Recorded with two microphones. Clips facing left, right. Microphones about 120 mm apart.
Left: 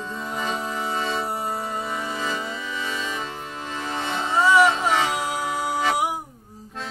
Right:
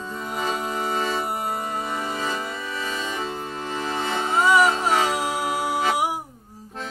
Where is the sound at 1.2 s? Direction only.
10° right (ahead or behind).